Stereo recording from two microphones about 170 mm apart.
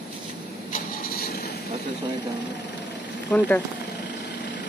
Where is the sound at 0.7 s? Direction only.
60° left (ahead or behind).